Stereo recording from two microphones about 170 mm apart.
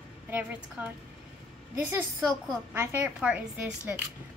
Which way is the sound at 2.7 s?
10° right (ahead or behind).